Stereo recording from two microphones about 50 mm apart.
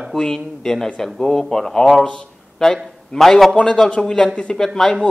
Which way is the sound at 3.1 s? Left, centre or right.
Centre.